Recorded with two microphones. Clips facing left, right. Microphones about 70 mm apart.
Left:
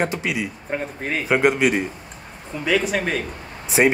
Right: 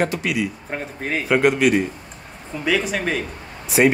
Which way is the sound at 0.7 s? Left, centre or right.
Centre.